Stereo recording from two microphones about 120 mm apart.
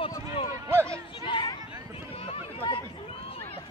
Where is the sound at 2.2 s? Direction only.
50° left (ahead or behind).